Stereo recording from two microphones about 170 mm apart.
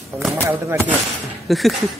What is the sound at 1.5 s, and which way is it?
Speech, centre (ahead or behind).